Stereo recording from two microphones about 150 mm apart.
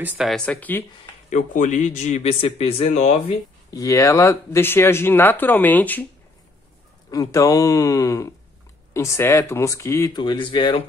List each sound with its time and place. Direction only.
0.0 s speech: 10° right (ahead or behind)
0.3 s speech: 10° left (ahead or behind)
1.3 s speech: 55° left (ahead or behind)
3.7 s speech: 20° left (ahead or behind)
7.1 s speech: 25° left (ahead or behind)
10.1 s speech: 30° left (ahead or behind)